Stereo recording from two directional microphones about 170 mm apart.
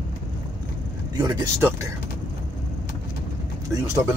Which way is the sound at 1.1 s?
20° right (ahead or behind).